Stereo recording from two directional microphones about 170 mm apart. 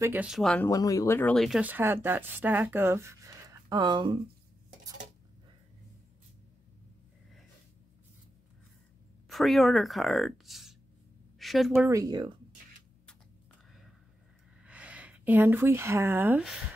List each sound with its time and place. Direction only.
0.0 s speech: 10° right (ahead or behind)
0.7 s speech: 20° left (ahead or behind)
1.3 s speech: centre (ahead or behind)
1.6 s speech: 10° right (ahead or behind)
9.3 s a woman's voice: centre (ahead or behind)
11.9 s speech: 20° right (ahead or behind)
14.6 s speech: 5° right (ahead or behind)